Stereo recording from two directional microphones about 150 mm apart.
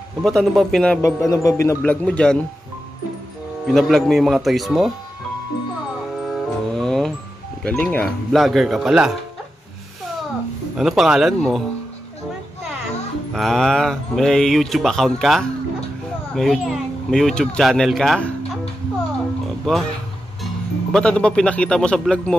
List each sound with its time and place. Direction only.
0.2 s speech: centre (ahead or behind)
1.0 s a man's voice: 20° left (ahead or behind)
1.8 s a man's voice: 10° left (ahead or behind)
3.6 s speech: centre (ahead or behind)
6.2 s music: centre (ahead or behind)
7.6 s speech: 10° left (ahead or behind)
10.8 s speech: centre (ahead or behind)
13.3 s speech: centre (ahead or behind)
19.7 s speech: 5° left (ahead or behind)
20.9 s a man's voice: 5° left (ahead or behind)